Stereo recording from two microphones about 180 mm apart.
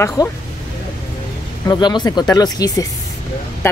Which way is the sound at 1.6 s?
25° left (ahead or behind).